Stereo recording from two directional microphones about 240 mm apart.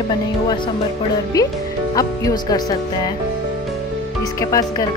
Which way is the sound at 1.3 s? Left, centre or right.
Centre.